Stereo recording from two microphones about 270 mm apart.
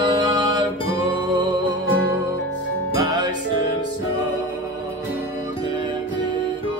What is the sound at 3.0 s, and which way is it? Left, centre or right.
Music, centre.